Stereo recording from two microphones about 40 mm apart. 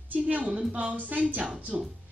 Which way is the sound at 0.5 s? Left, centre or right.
Right.